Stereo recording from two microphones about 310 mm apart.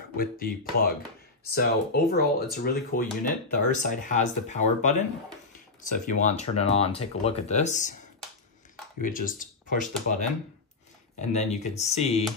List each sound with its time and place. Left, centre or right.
0.2 s speech: left
9.0 s speech: left